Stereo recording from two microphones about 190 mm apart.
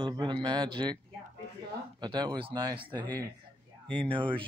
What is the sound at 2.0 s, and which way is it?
Speech, 25° right (ahead or behind).